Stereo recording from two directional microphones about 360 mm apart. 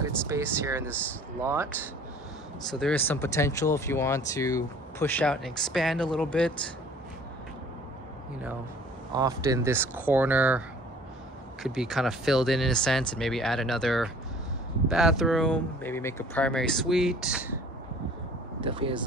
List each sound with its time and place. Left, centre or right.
0.3 s speech: centre
2.8 s speech: centre
9.1 s speech: centre
11.6 s speech: centre
18.6 s speech: centre